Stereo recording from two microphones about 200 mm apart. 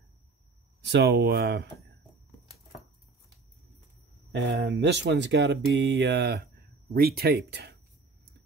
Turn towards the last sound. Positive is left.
turn(degrees=-55)  # may be behind; listen again after turning